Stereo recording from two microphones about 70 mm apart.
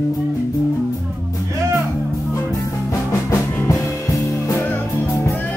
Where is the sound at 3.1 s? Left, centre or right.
Left.